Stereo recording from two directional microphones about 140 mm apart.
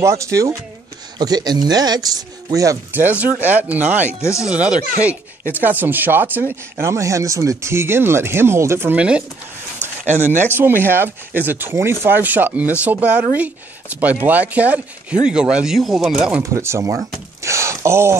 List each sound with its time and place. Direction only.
0.0 s speech: 20° right (ahead or behind)
4.2 s speech: 20° left (ahead or behind)
4.5 s speech: 5° right (ahead or behind)
10.5 s speech: 15° right (ahead or behind)
16.4 s speech: 20° right (ahead or behind)